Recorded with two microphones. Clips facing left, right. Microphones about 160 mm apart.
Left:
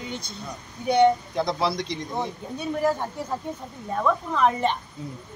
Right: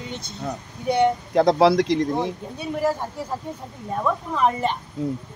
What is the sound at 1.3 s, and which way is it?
Speech, 90° right.